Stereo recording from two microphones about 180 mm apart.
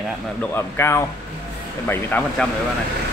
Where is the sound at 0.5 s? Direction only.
15° left (ahead or behind).